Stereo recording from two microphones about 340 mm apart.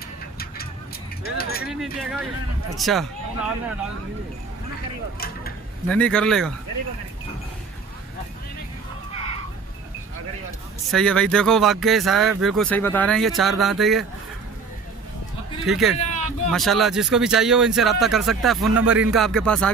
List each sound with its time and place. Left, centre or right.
1.2 s keys jangling: left
1.7 s speech: centre
5.9 s speech: centre
9.1 s a sound: centre
10.9 s speech: centre
15.6 s speech: centre